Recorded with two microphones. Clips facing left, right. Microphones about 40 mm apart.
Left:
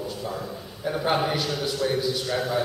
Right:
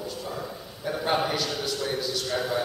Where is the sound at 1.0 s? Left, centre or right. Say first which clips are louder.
Left 1 dB; centre.